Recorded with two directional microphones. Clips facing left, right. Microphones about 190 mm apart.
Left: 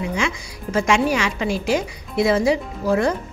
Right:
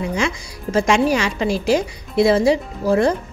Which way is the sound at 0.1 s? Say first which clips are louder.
Right 2 dB; 35° right (ahead or behind).